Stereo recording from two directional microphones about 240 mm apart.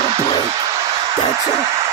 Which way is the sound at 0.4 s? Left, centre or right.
Centre.